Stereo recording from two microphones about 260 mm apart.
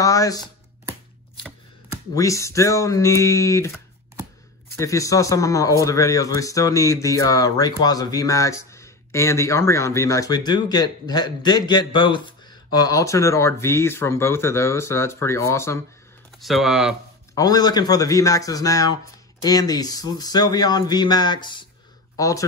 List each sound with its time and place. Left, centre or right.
0.0 s a sound: centre
2.1 s a man's voice: centre
4.7 s a man's voice: centre
16.3 s speech: centre
17.4 s a man's voice: centre